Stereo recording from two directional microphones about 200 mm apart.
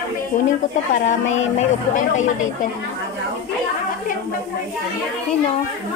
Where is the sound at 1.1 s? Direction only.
35° left (ahead or behind).